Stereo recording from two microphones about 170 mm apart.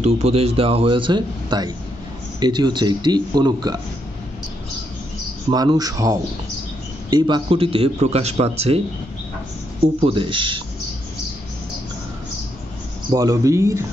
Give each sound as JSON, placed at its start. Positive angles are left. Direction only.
{"t": 0.0, "sound": "a man's voice", "side_deg": -35}
{"t": 5.5, "sound": "a man's voice", "side_deg": -25}
{"t": 9.9, "sound": "speech", "side_deg": -30}
{"t": 13.1, "sound": "speech", "side_deg": -20}